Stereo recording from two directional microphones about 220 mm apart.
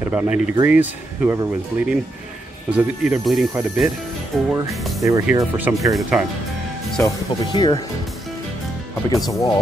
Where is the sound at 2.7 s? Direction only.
5° right (ahead or behind).